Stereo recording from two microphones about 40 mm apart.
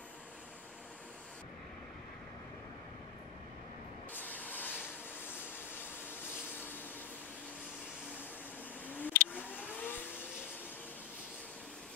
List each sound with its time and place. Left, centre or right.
4.1 s spray: left
8.8 s vehicle: left